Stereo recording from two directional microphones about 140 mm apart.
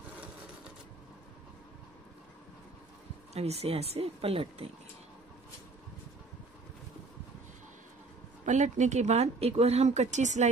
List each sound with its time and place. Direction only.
3.3 s speech: 50° right (ahead or behind)
8.5 s speech: 60° right (ahead or behind)